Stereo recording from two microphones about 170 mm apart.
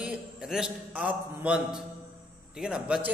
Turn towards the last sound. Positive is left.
turn(degrees=-5)  # may be behind; listen again after turning